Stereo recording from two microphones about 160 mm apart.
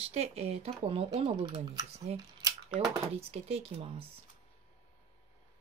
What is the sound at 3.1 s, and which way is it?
Speech, 40° right (ahead or behind).